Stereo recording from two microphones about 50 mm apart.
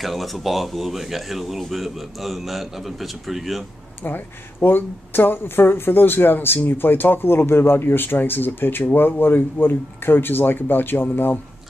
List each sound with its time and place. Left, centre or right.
0.0 s speech: centre
4.0 s speech: left